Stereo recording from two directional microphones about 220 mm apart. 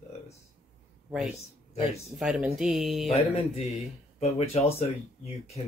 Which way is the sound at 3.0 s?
25° left (ahead or behind).